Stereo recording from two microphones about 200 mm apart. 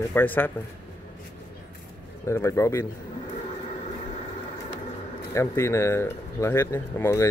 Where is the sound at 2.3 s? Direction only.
15° left (ahead or behind).